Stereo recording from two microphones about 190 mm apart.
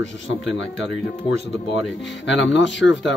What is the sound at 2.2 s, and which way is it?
Speech, 75° left (ahead or behind).